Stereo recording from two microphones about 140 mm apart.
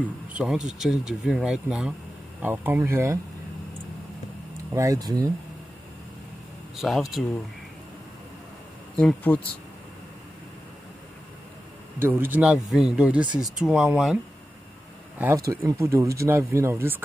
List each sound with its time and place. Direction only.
0.3 s speech: 5° right (ahead or behind)
4.6 s speech: 25° right (ahead or behind)
6.8 s speech: centre (ahead or behind)
8.9 s speech: 10° left (ahead or behind)
12.0 s speech: 15° right (ahead or behind)
15.1 s speech: 20° right (ahead or behind)